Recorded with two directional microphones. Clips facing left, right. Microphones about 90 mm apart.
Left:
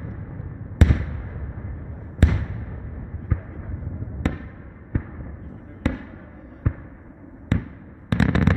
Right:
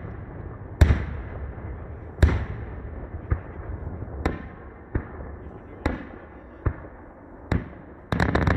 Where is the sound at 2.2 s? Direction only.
15° right (ahead or behind).